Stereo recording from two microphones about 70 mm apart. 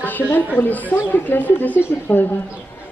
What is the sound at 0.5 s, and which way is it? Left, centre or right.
Speech, left.